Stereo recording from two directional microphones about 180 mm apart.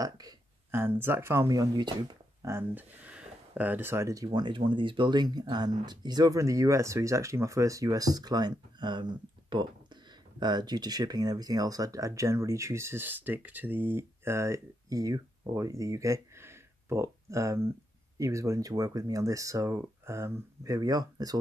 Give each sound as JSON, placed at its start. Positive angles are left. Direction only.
{"t": 0.0, "sound": "speech", "side_deg": -20}